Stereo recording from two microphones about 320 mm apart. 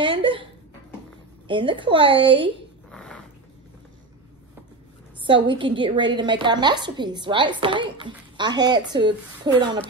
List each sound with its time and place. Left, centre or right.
0.0 s a sound: centre
1.5 s a woman's voice: centre
2.9 s dog: centre
5.2 s a woman's voice: centre